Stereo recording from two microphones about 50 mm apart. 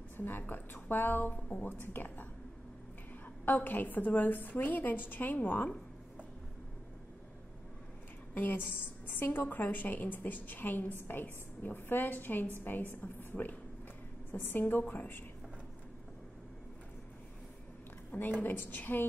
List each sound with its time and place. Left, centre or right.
0.2 s a woman's voice: left
3.4 s a woman's voice: left
8.4 s a woman's voice: left
18.4 s a woman's voice: left